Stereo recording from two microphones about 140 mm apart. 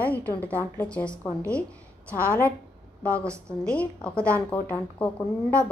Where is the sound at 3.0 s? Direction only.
10° left (ahead or behind).